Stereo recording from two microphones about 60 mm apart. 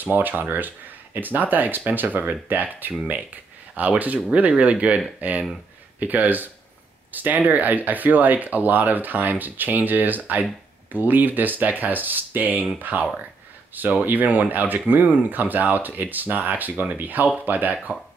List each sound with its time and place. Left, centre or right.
0.0 s speech: right
14.0 s speech: right